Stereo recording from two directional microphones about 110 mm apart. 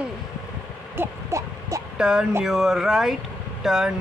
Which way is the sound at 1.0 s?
25° right (ahead or behind).